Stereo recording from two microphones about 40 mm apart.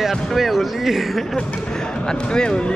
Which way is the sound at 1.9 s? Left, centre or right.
Left.